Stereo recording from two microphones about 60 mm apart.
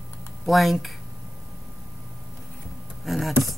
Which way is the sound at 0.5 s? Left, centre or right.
Centre.